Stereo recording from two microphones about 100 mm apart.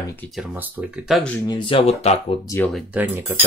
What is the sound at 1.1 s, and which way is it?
Speech, 5° right (ahead or behind).